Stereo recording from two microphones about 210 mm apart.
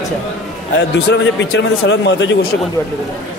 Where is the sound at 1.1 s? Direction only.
60° left (ahead or behind).